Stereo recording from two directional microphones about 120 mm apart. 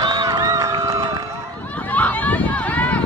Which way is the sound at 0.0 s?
35° right (ahead or behind).